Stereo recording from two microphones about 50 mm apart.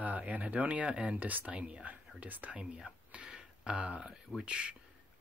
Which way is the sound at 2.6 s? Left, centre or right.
Centre.